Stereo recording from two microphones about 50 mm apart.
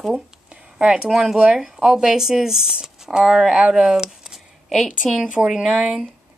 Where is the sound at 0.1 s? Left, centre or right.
Centre.